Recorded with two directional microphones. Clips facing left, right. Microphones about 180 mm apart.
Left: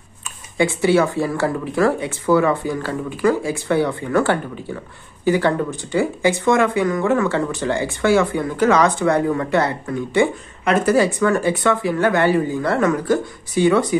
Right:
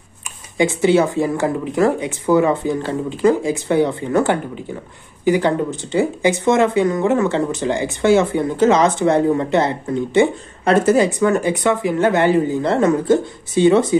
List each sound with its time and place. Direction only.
0.6 s speech: 20° right (ahead or behind)
11.0 s speech: 20° right (ahead or behind)